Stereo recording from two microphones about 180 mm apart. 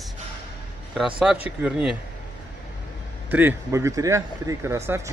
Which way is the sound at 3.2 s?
10° right (ahead or behind).